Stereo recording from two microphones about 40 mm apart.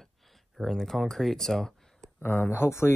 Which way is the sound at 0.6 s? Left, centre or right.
Centre.